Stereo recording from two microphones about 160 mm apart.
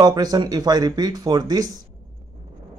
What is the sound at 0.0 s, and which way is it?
Speech, 25° right (ahead or behind).